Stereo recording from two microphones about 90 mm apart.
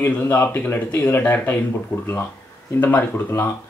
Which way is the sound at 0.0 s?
25° left (ahead or behind).